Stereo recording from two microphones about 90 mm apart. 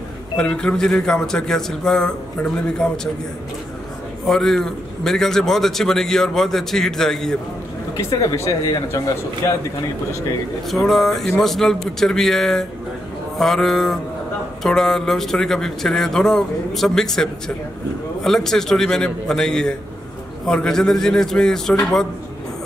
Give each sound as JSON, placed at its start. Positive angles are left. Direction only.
{"t": 0.4, "sound": "speech", "side_deg": 10}
{"t": 4.3, "sound": "a man's voice", "side_deg": 5}
{"t": 8.0, "sound": "speech", "side_deg": 40}
{"t": 10.7, "sound": "a man's voice", "side_deg": 0}